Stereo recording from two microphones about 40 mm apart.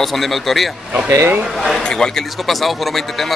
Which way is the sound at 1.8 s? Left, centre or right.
Centre.